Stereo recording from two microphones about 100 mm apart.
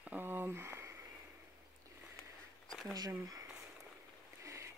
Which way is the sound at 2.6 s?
Centre (ahead or behind).